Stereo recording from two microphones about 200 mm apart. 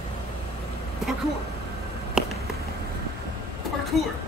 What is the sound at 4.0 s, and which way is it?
Speech, centre (ahead or behind).